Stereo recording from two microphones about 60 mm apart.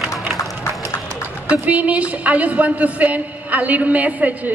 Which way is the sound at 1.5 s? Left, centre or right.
Right.